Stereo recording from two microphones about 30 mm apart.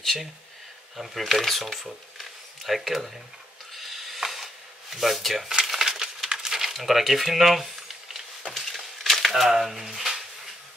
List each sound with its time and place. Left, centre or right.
0.0 s speech: centre
3.7 s a sound: centre
4.9 s speech: centre
5.9 s a sound: right
6.3 s coin: centre
9.3 s speech: centre